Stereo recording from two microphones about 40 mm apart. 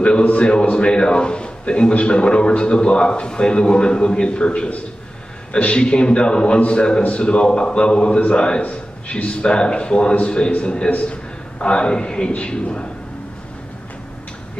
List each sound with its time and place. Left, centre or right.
0.0 s a man's voice: left
10.9 s a man's voice: left
11.6 s a man's voice: left